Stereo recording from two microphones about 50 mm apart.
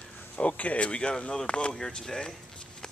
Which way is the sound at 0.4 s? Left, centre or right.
Left.